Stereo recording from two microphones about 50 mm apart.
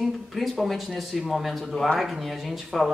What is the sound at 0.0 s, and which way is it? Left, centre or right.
Speech, centre.